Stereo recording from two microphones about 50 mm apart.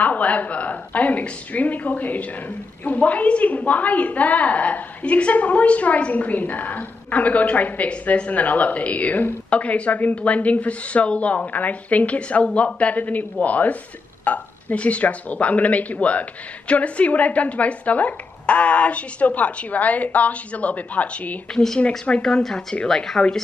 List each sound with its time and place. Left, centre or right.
0.0 s a woman's voice: left
22.2 s speech: centre